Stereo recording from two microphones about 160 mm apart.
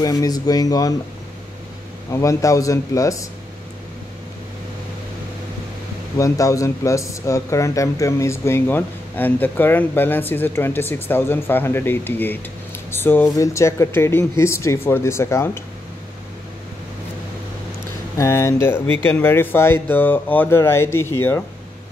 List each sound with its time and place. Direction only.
0.0 s speech: 25° left (ahead or behind)
2.0 s speech: 20° left (ahead or behind)
6.1 s speech: 20° left (ahead or behind)
18.1 s speech: 20° left (ahead or behind)